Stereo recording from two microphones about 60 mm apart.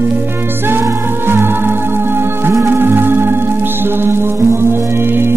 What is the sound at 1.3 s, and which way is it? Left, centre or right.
Music, right.